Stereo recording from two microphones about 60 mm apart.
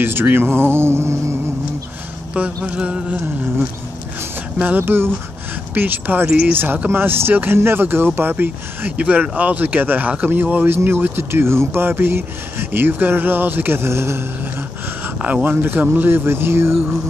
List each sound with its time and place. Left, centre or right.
0.0 s speech: right
2.3 s a sound: right
4.6 s speech: right
15.4 s speech: right